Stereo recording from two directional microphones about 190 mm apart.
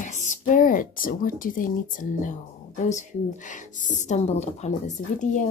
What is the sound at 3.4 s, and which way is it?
A woman's voice, 40° left (ahead or behind).